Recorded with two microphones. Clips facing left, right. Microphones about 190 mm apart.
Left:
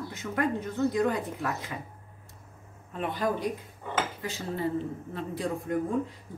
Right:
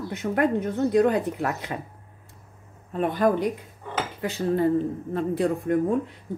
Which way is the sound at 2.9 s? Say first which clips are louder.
Right 8 dB; 50° right (ahead or behind).